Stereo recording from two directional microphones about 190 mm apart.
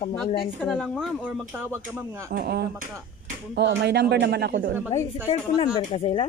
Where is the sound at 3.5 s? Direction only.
65° right (ahead or behind).